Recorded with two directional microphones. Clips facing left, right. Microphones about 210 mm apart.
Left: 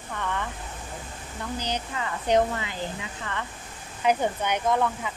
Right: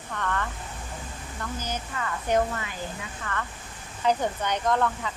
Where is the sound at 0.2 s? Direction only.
15° left (ahead or behind).